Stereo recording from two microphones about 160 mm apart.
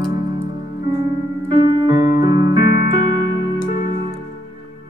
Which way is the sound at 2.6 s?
75° left (ahead or behind).